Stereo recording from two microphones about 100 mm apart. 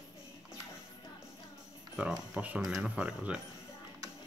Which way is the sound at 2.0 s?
15° right (ahead or behind).